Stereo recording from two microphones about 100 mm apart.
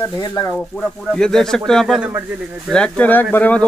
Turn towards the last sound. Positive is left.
turn(degrees=15)  # may be behind; listen again after turning